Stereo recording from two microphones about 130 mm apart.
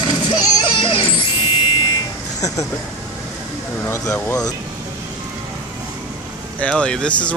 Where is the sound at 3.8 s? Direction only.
20° left (ahead or behind).